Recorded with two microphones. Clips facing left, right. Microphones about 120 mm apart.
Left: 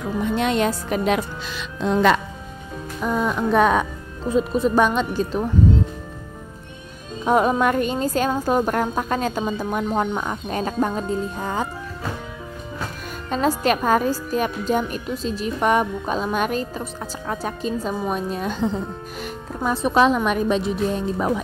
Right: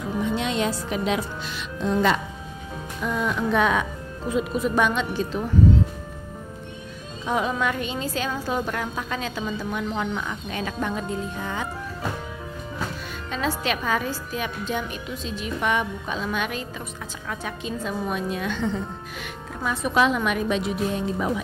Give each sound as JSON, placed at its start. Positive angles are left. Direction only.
{"t": 0.4, "sound": "speech", "side_deg": 55}
{"t": 1.6, "sound": "speech", "side_deg": 85}
{"t": 3.0, "sound": "a woman's voice", "side_deg": 45}
{"t": 7.2, "sound": "a woman's voice", "side_deg": 50}
{"t": 13.3, "sound": "a woman's voice", "side_deg": 45}